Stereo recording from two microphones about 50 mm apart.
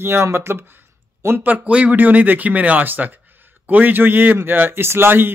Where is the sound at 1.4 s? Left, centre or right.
Right.